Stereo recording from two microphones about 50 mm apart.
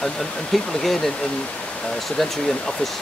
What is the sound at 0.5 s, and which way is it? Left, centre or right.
Speech, centre.